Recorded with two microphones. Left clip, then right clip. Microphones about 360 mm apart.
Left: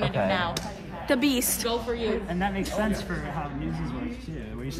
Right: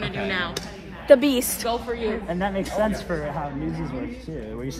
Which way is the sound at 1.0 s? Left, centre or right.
Centre.